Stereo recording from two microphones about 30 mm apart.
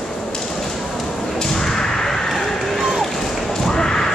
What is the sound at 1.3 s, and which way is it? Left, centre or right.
Thump, centre.